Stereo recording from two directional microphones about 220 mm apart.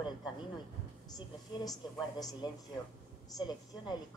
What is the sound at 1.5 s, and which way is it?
Speech, 20° left (ahead or behind).